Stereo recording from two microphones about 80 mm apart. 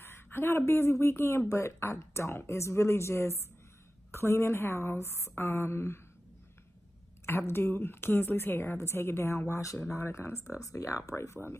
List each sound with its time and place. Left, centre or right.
0.0 s a woman's voice: left
7.2 s a woman's voice: left